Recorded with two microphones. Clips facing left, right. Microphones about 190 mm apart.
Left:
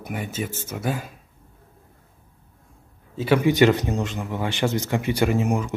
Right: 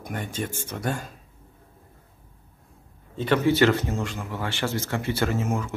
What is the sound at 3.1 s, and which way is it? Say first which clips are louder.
Speech: left 2 dB; 10° left (ahead or behind).